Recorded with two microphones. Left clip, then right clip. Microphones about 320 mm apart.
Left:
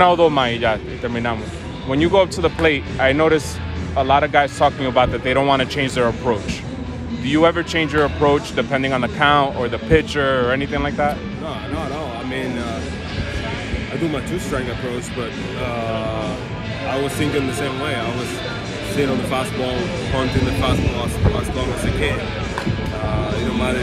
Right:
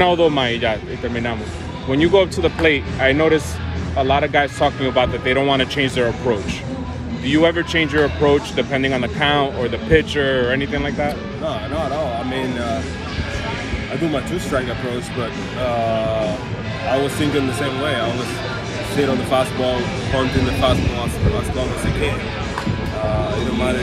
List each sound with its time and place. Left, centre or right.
0.0 s speech: left
7.2 s speech: left
19.3 s speech: centre